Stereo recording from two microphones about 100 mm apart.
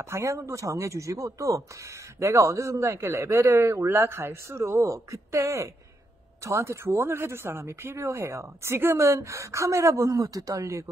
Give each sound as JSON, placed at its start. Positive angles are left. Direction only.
{"t": 0.0, "sound": "speech", "side_deg": -30}